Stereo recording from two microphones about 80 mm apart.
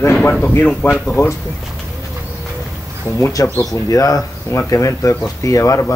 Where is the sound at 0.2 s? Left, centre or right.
Left.